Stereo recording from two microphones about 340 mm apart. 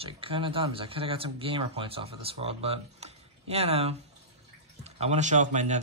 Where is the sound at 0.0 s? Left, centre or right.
Centre.